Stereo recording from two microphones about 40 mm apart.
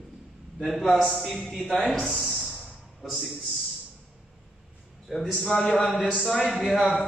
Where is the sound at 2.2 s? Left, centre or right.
Centre.